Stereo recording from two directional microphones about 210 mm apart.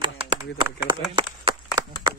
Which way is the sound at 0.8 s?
20° right (ahead or behind).